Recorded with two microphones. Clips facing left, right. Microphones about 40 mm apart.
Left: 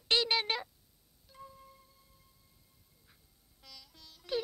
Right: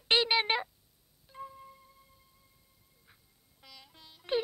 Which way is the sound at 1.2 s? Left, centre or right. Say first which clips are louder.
Right 7 dB; right.